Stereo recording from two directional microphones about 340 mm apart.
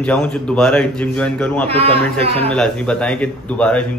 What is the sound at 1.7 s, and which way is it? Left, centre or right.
Speech, centre.